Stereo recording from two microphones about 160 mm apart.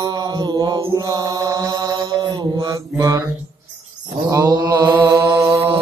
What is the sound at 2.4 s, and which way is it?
Mantra, 25° right (ahead or behind).